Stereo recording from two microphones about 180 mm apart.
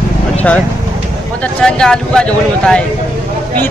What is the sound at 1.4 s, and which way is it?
Speech, 5° left (ahead or behind).